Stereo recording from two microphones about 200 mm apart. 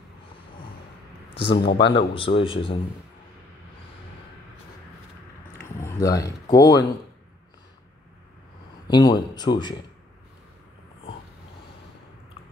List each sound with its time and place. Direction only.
1.5 s speech: 60° left (ahead or behind)
2.1 s speech: 25° left (ahead or behind)
5.8 s speech: 15° left (ahead or behind)
8.8 s speech: 20° left (ahead or behind)